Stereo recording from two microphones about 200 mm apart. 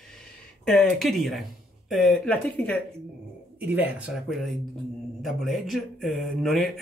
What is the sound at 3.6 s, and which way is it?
Speech, 10° right (ahead or behind).